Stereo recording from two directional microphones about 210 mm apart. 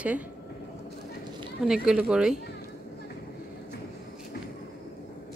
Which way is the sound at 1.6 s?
5° right (ahead or behind).